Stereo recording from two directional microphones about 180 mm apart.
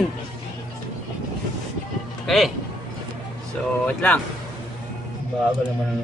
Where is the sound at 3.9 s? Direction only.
5° left (ahead or behind).